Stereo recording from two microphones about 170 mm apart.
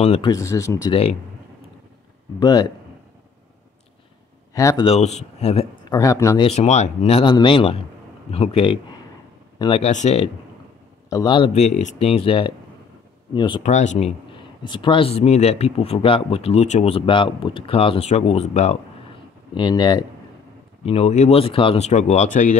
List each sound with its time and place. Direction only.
0.0 s speech: 40° left (ahead or behind)
0.3 s speech: 20° left (ahead or behind)
2.4 s speech: 25° left (ahead or behind)
4.6 s speech: 20° left (ahead or behind)
4.8 s speech: 40° left (ahead or behind)
5.9 s speech: 20° left (ahead or behind)
6.4 s speech: 40° left (ahead or behind)
9.8 s speech: 45° left (ahead or behind)
11.1 s speech: 25° left (ahead or behind)
11.6 s speech: 45° left (ahead or behind); by 13.6 s 25° left (ahead or behind)
13.6 s speech: 45° left (ahead or behind)
14.6 s speech: 30° left (ahead or behind)
19.5 s speech: 25° left (ahead or behind)
20.8 s speech: 35° left (ahead or behind)